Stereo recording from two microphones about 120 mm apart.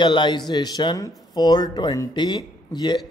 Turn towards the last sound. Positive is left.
turn(degrees=35)  # may be behind; listen again after turning